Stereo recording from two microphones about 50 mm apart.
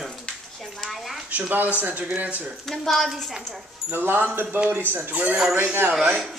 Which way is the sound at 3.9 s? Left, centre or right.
Right.